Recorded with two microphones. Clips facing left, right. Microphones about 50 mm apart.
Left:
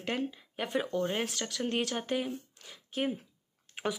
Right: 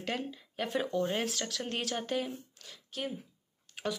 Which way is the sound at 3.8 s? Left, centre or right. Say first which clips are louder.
Left 2 dB; left.